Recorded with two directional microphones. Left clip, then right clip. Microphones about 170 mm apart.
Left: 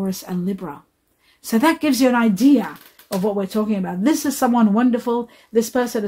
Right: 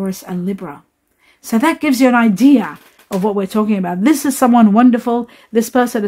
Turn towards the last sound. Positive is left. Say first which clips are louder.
# right 5 dB
turn(degrees=-40)  # may be behind; listen again after turning